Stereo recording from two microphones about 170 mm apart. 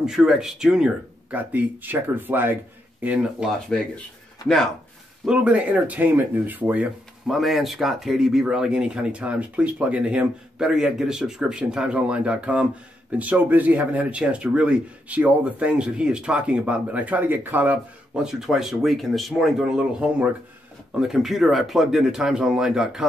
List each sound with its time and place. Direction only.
0.0 s speech: 5° right (ahead or behind)
4.4 s speech: 25° left (ahead or behind)
5.2 s speech: 5° right (ahead or behind)